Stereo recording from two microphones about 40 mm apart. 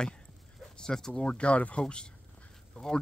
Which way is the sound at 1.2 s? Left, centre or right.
Left.